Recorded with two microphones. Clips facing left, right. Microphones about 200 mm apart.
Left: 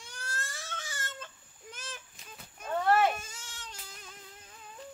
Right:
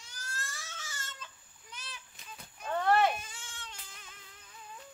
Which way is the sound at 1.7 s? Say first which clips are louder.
Left 4 dB; 45° left (ahead or behind).